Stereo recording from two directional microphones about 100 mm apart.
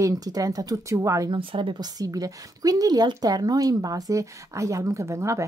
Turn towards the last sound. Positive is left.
turn(degrees=-30)  # may be behind; listen again after turning